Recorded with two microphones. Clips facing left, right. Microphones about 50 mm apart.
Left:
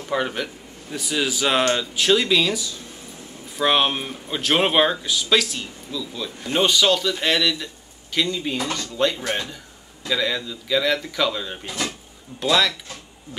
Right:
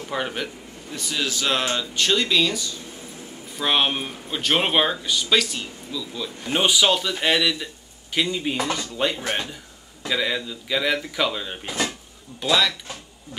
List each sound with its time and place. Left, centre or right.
0.1 s speech: centre
0.9 s a man's voice: centre
11.6 s speech: right
12.4 s speech: centre